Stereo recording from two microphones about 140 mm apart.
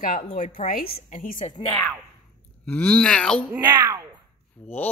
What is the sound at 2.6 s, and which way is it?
Speech, 10° left (ahead or behind).